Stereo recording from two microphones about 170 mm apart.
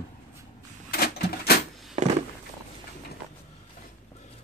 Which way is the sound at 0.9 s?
65° left (ahead or behind).